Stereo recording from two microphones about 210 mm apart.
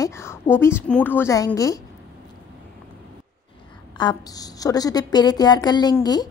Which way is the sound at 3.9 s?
20° left (ahead or behind).